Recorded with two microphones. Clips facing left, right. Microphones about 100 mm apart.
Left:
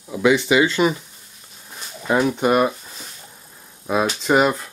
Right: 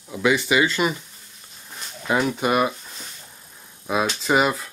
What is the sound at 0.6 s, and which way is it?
Speech, 20° left (ahead or behind).